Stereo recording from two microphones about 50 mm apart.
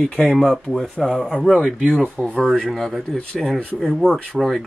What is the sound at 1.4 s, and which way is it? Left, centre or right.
Speech, centre.